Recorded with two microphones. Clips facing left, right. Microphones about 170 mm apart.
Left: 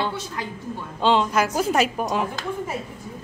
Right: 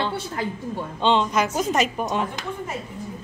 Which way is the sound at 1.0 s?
5° left (ahead or behind).